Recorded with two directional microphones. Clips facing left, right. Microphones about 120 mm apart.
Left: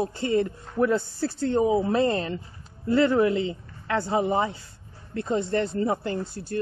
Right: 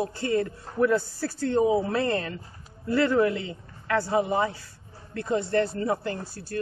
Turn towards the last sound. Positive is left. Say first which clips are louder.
# left 3 dB
turn(degrees=25)  # may be behind; listen again after turning